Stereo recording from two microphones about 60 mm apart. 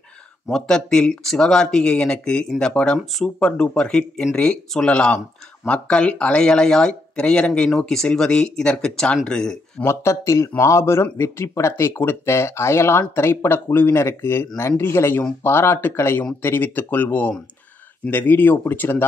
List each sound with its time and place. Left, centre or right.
0.5 s speech: centre
9.8 s speech: left